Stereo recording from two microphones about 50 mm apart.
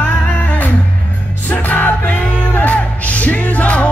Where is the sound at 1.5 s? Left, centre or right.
Left.